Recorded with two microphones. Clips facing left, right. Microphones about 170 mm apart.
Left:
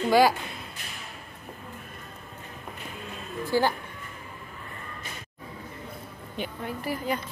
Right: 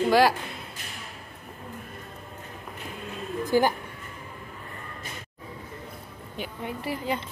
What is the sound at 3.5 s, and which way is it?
Speech, 15° right (ahead or behind).